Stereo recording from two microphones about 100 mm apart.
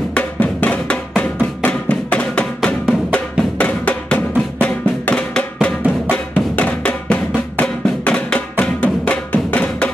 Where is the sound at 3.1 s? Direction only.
10° left (ahead or behind).